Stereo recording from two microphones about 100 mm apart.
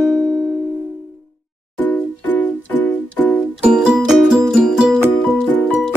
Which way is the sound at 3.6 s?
10° right (ahead or behind).